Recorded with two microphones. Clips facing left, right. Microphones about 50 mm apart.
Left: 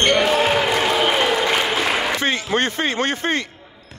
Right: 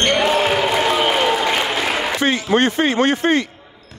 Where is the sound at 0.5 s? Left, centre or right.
Centre.